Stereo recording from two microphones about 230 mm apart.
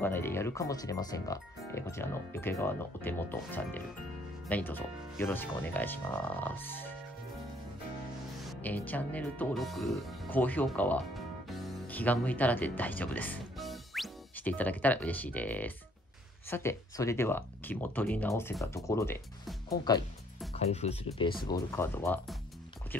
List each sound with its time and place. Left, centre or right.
0.0 s speech: centre
8.5 s speech: centre; by 21.4 s left
21.5 s speech: centre